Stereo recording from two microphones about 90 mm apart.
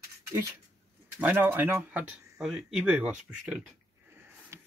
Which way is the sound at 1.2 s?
20° right (ahead or behind).